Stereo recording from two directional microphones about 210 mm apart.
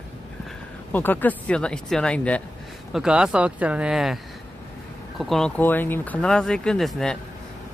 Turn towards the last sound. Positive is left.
turn(degrees=0)  # may be behind; listen again after turning